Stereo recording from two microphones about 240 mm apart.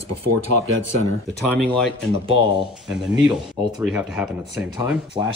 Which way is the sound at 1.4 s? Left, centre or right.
Centre.